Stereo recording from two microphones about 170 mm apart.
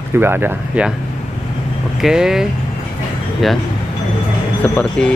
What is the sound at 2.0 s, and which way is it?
Speech, 5° right (ahead or behind).